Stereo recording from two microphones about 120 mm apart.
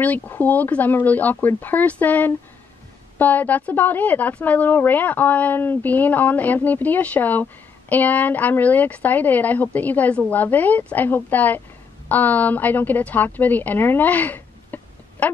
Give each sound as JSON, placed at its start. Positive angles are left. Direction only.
{"t": 0.0, "sound": "a woman's voice", "side_deg": 15}